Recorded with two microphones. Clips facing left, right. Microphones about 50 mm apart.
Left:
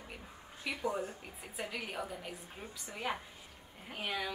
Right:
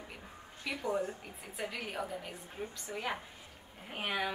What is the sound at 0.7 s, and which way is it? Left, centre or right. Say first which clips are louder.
A woman's voice: right 2 dB; centre.